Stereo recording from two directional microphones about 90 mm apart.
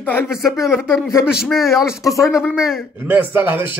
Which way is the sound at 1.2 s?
5° right (ahead or behind).